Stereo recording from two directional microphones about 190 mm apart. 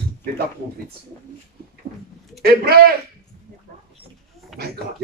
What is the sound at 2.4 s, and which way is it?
Speech, 55° right (ahead or behind).